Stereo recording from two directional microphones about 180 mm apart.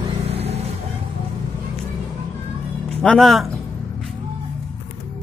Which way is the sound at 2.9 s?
5° left (ahead or behind).